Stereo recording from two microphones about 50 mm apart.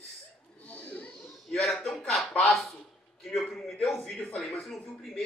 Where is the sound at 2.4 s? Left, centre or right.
Centre.